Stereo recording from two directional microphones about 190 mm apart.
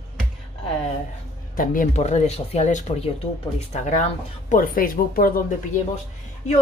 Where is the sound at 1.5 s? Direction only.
45° left (ahead or behind).